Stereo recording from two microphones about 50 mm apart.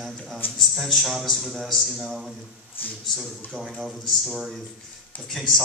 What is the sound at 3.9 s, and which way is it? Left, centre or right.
A man's voice, centre.